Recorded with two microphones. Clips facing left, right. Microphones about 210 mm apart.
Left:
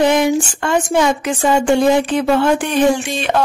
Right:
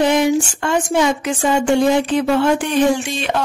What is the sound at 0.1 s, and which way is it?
Speech, 55° left (ahead or behind).